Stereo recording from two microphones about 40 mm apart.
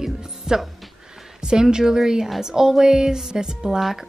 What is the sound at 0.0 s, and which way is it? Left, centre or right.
Music, centre.